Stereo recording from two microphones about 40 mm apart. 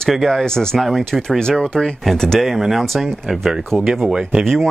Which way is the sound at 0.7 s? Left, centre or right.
Centre.